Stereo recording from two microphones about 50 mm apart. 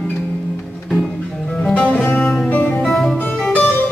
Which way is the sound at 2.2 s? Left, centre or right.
Centre.